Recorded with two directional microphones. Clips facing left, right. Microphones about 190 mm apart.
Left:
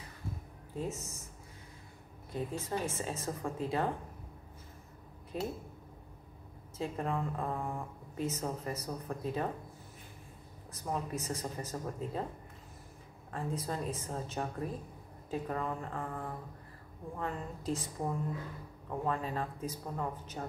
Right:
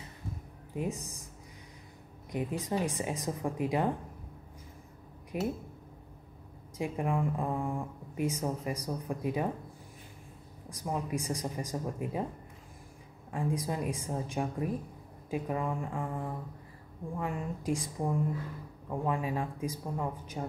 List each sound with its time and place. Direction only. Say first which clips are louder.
0.7 s speech: right 3 dB; 15° right (ahead or behind)
2.3 s speech: right 4 dB; 15° right (ahead or behind)
5.3 s speech: right 4 dB; 15° right (ahead or behind)
6.8 s speech: right 3 dB; 15° right (ahead or behind)
10.7 s speech: right 3 dB; 15° right (ahead or behind)
13.3 s speech: right 4 dB; 15° right (ahead or behind)